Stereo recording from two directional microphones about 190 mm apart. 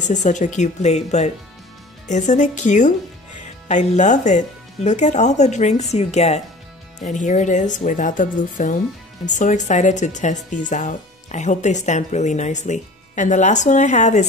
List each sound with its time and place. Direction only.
0.0 s speech: 40° left (ahead or behind)